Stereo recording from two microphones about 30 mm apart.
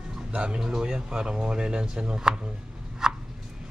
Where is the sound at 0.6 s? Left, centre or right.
Right.